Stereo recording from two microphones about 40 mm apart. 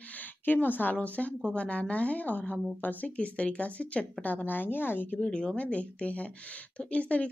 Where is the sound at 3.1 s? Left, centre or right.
Left.